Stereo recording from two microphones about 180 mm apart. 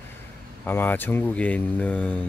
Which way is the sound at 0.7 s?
10° left (ahead or behind).